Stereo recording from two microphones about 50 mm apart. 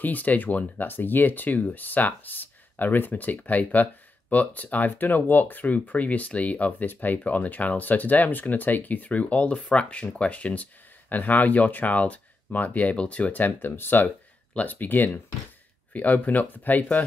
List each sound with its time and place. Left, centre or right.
0.0 s speech: left